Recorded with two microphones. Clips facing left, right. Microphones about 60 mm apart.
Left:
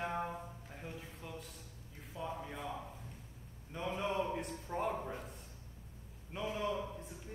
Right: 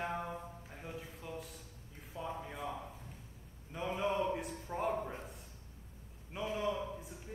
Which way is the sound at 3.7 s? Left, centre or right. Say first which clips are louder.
Right 2 dB; centre.